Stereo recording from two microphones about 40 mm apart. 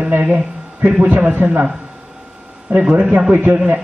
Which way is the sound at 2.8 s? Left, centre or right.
Right.